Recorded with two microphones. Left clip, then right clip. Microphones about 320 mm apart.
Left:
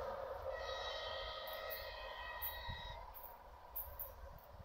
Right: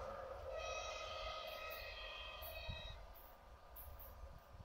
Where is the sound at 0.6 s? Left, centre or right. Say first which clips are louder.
Left 2 dB; centre.